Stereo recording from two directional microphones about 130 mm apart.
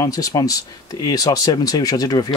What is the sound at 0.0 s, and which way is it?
Speech, 30° left (ahead or behind).